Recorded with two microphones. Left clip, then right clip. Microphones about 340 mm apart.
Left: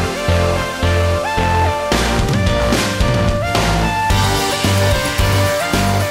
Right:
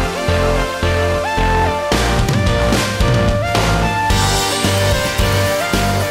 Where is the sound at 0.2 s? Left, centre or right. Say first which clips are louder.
Right 1 dB; centre.